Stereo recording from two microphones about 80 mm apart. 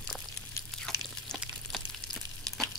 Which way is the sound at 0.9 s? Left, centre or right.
Centre.